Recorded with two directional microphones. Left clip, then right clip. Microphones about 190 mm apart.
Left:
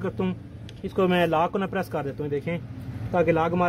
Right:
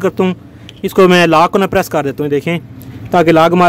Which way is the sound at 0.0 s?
30° right (ahead or behind).